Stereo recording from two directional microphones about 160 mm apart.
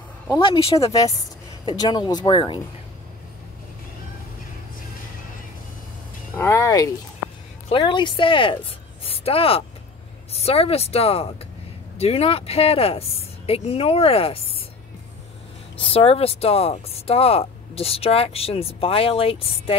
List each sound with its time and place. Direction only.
0.4 s speech: 35° left (ahead or behind)
1.7 s speech: 25° left (ahead or behind)
6.3 s speech: 15° left (ahead or behind); by 14.6 s 35° left (ahead or behind)
15.8 s speech: 35° left (ahead or behind)